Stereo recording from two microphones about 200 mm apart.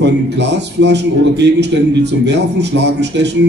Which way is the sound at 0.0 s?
60° right (ahead or behind).